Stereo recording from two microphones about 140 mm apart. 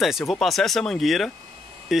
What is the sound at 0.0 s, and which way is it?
Speech, centre (ahead or behind).